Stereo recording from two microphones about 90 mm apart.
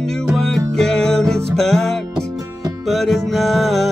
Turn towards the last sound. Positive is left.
turn(degrees=0)  # may be behind; listen again after turning